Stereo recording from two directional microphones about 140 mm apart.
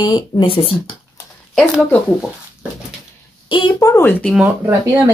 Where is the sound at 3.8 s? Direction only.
20° left (ahead or behind).